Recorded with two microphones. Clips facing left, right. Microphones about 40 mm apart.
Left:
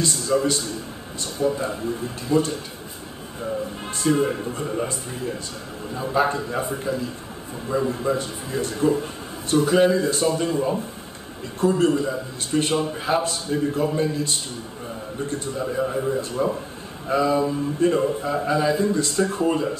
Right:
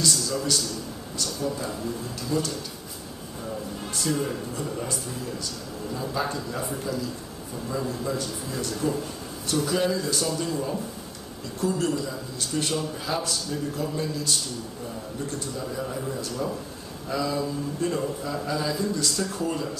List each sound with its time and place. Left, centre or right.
0.0 s a man's voice: left
4.0 s a man's voice: left